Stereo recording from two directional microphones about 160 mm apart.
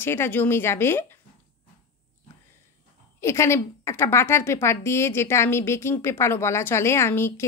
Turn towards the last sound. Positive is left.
turn(degrees=15)  # may be behind; listen again after turning